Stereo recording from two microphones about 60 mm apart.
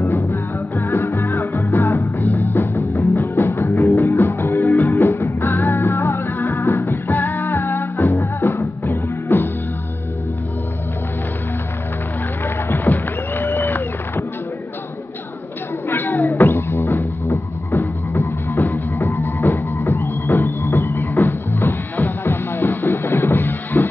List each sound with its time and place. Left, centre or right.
0.0 s music: left
2.0 s music: left
8.8 s music: left
12.4 s a sound: left
15.9 s a sound: left
16.5 s music: left